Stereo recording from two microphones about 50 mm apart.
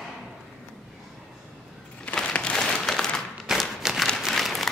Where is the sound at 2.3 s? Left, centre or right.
Left.